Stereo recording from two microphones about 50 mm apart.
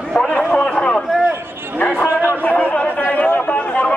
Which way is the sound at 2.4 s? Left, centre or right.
Left.